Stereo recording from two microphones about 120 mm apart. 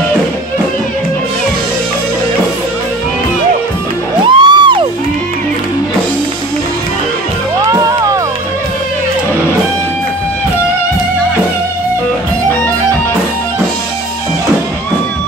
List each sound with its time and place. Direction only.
4.2 s music: 40° right (ahead or behind)
7.6 s music: 30° right (ahead or behind)